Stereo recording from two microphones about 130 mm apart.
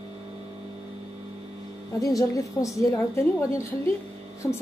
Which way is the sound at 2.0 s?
25° left (ahead or behind).